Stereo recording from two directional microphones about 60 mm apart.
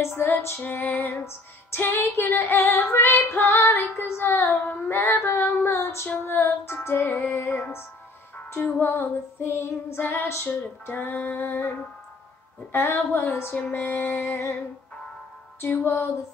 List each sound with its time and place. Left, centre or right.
0.0 s female singing: left
0.7 s child singing: left
2.4 s female singing: left
2.7 s child singing: left
8.7 s child singing: left
12.7 s child singing: left
14.1 s female singing: left
15.6 s child singing: left